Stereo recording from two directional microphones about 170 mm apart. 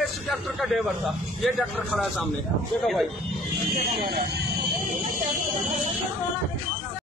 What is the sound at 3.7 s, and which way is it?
Speech, 60° right (ahead or behind).